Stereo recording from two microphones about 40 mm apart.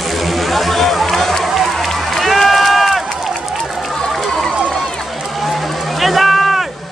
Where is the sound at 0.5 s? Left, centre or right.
Centre.